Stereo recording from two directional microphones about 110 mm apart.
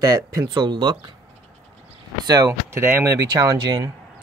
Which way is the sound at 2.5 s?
25° right (ahead or behind).